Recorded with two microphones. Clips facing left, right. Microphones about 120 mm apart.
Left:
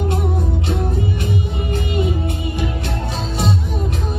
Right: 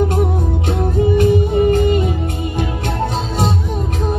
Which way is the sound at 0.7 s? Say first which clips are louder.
Right 9 dB; 45° right (ahead or behind).